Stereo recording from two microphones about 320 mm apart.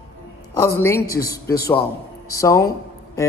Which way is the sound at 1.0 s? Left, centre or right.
Left.